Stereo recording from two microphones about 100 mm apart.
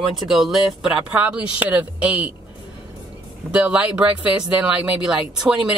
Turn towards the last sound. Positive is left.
turn(degrees=-10)  # may be behind; listen again after turning